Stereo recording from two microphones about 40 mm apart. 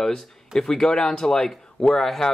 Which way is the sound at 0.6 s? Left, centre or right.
Centre.